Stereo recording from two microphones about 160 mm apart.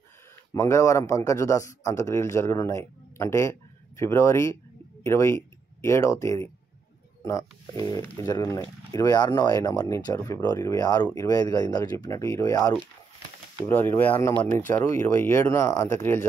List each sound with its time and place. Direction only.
0.5 s a man's voice: 20° left (ahead or behind)
13.7 s speech: 10° left (ahead or behind)